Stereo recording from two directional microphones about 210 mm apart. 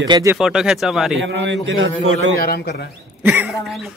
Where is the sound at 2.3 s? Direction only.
45° left (ahead or behind).